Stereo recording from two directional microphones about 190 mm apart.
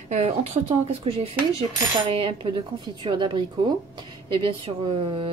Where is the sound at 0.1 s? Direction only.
35° right (ahead or behind).